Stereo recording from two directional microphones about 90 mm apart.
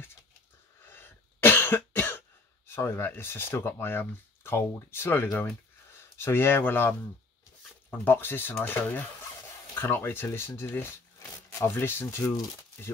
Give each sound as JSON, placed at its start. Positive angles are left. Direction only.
{"t": 0.8, "sound": "cough", "side_deg": 25}
{"t": 2.7, "sound": "speech", "side_deg": 30}